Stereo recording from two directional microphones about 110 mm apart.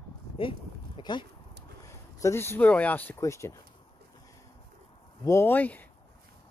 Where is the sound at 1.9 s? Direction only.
25° left (ahead or behind).